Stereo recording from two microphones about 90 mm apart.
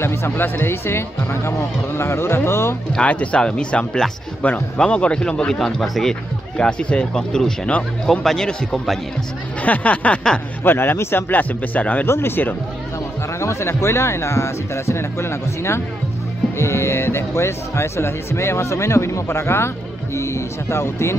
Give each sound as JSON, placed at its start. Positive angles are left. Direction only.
{"t": 0.0, "sound": "speech", "side_deg": 30}
{"t": 2.9, "sound": "speech", "side_deg": 15}
{"t": 10.6, "sound": "speech", "side_deg": 25}